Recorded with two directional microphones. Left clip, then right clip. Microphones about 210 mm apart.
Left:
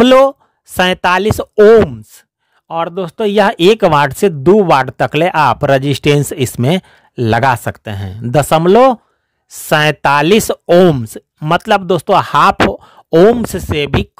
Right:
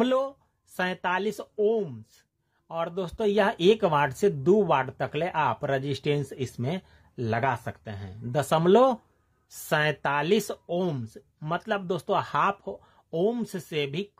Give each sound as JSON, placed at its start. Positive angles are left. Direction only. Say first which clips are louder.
{"t": 0.0, "sound": "speech", "louder": "left 19 dB", "side_deg": 50}